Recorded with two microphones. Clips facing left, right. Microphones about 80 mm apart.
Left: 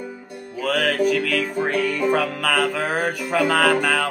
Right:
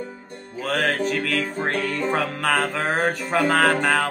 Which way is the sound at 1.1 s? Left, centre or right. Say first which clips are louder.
Left 3 dB; right.